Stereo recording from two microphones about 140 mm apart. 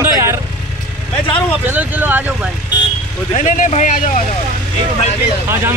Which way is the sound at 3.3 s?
60° left (ahead or behind).